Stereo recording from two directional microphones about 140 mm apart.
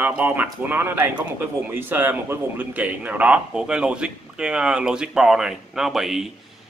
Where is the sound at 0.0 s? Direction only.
10° right (ahead or behind).